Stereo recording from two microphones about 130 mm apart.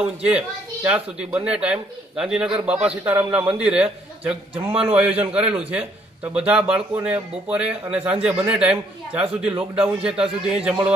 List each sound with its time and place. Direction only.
0.2 s a man's voice: 10° right (ahead or behind)